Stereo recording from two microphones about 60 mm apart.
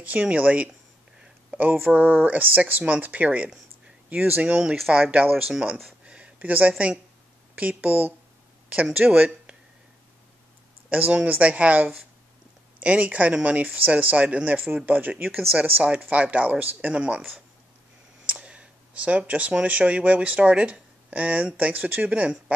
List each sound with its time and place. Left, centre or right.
0.0 s speech: right
6.0 s a sound: centre
7.5 s speech: right
10.9 s speech: right
15.3 s speech: centre
16.1 s speech: right
18.2 s speech: right